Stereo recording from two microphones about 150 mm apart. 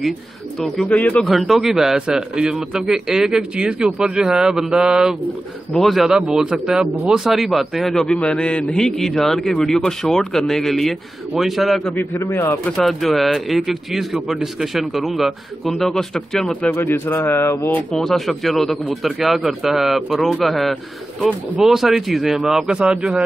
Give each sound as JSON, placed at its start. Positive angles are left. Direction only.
{"t": 0.6, "sound": "speech", "side_deg": 5}
{"t": 11.9, "sound": "a man's voice", "side_deg": 15}
{"t": 12.7, "sound": "speech", "side_deg": 0}
{"t": 16.7, "sound": "speech", "side_deg": 15}